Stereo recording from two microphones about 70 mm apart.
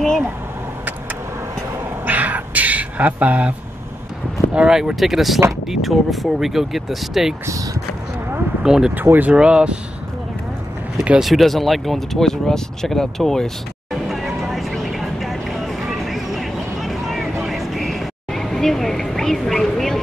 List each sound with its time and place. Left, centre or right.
2.0 s dog: right
4.6 s speech: centre
7.4 s speech: right
8.6 s speech: centre
8.9 s speech: right
9.3 s speech: centre
11.1 s speech: centre
14.0 s vehicle: centre